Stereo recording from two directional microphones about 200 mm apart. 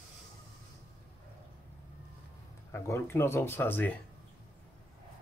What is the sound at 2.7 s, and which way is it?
Speech, 15° left (ahead or behind).